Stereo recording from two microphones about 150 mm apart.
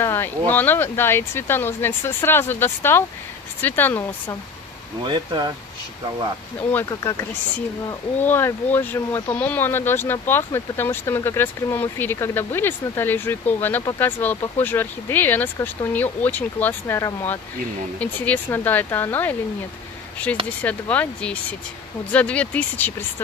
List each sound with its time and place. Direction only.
0.0 s speech: 15° left (ahead or behind)
5.0 s speech: 30° right (ahead or behind)
8.2 s speech: 15° left (ahead or behind)
20.6 s speech: 10° left (ahead or behind)